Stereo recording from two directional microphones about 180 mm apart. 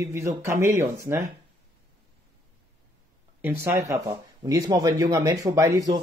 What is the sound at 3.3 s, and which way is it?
Speech, 10° right (ahead or behind).